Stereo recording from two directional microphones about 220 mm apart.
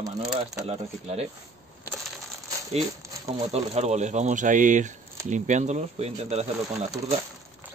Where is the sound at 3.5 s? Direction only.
30° right (ahead or behind).